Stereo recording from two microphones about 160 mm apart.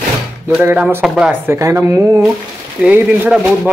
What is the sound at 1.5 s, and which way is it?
Speech, 15° right (ahead or behind).